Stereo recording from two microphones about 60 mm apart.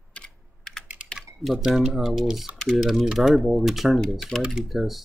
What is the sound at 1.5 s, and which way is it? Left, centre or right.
Speech, centre.